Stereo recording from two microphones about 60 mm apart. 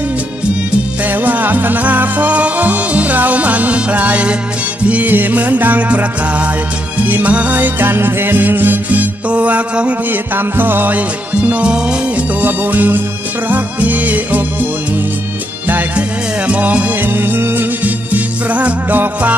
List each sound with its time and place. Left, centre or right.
1.0 s music: right
9.3 s music: right
10.5 s music: right; by 12.3 s centre
12.4 s music: right
15.7 s music: right
17.8 s music: right